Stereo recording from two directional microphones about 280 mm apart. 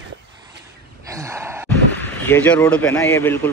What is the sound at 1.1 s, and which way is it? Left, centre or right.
Sigh, centre.